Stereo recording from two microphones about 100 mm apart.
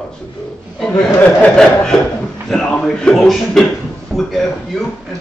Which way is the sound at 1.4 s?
10° left (ahead or behind).